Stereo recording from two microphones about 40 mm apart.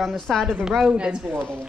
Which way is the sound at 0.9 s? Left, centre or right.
Right.